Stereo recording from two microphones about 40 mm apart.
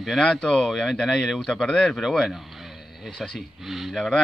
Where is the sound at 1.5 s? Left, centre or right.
Left.